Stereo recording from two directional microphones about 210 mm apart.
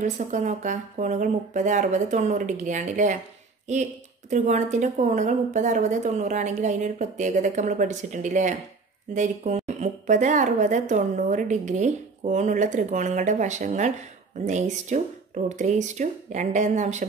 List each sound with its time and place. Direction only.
0.0 s a woman's voice: 35° right (ahead or behind)